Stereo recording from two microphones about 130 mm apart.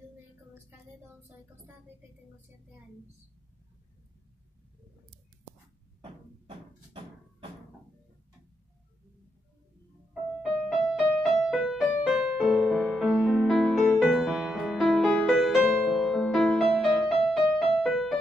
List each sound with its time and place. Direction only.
6.4 s music: 45° right (ahead or behind)
10.4 s music: 5° left (ahead or behind)